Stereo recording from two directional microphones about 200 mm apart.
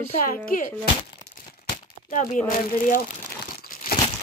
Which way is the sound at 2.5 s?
45° left (ahead or behind).